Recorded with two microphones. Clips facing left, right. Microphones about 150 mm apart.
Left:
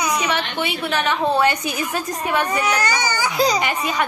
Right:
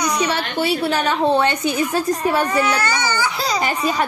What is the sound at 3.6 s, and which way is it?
Speech, 35° right (ahead or behind).